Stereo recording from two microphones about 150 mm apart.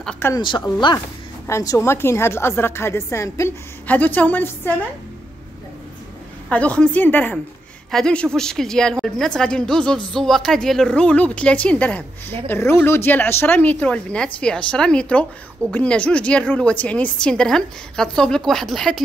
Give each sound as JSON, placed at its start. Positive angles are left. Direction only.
{"t": 0.0, "sound": "speech", "side_deg": 5}
{"t": 0.4, "sound": "speech", "side_deg": 30}
{"t": 1.5, "sound": "speech", "side_deg": 20}
{"t": 6.5, "sound": "speech", "side_deg": 10}